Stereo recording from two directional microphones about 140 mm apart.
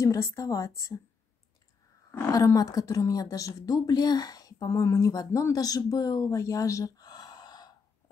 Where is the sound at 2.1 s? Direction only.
20° left (ahead or behind).